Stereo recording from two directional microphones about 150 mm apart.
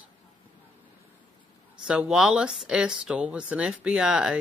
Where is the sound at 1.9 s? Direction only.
5° right (ahead or behind).